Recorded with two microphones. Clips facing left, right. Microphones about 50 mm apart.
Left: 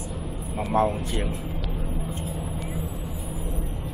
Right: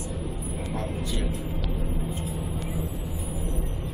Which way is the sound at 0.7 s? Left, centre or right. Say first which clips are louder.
Left 10 dB; left.